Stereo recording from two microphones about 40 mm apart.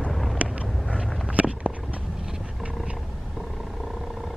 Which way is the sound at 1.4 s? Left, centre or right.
Right.